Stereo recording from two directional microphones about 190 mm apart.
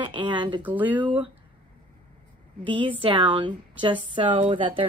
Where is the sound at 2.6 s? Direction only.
25° right (ahead or behind).